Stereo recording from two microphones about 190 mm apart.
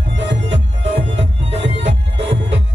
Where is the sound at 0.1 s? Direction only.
70° right (ahead or behind).